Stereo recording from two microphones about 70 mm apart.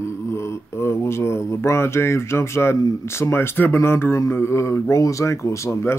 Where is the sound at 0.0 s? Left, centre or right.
Left.